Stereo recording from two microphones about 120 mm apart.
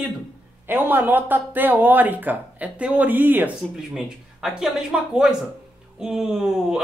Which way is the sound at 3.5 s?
5° right (ahead or behind).